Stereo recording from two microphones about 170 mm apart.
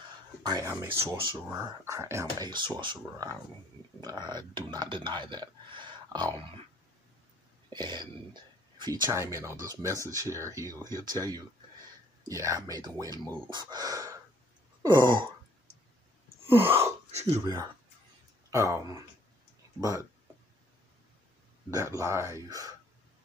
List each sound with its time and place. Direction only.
0.4 s speech: 20° right (ahead or behind)
7.7 s speech: 25° right (ahead or behind)
16.4 s a sound: 15° right (ahead or behind)
18.5 s speech: 20° right (ahead or behind)
21.6 s speech: 15° right (ahead or behind)